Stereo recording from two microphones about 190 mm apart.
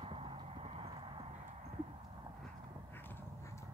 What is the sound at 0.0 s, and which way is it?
Clip-clop, 30° right (ahead or behind).